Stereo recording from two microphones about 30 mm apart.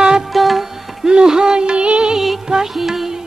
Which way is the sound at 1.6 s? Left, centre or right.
Right.